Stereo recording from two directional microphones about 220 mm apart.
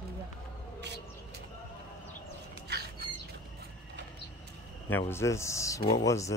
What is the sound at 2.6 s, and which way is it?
Bird, 45° right (ahead or behind).